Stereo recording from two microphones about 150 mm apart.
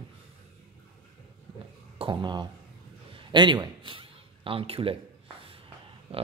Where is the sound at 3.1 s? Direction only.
30° right (ahead or behind).